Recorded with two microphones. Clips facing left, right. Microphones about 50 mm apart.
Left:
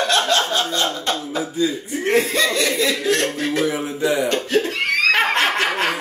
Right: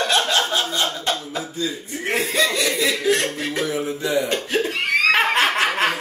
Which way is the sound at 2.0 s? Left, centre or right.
Centre.